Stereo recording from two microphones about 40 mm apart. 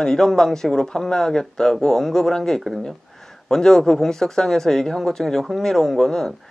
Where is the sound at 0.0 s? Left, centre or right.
Centre.